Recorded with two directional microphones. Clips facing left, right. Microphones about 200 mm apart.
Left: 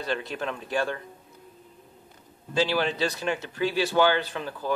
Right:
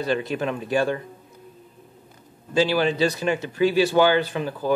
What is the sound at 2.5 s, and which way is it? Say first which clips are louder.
Speech: right 5 dB; 5° right (ahead or behind).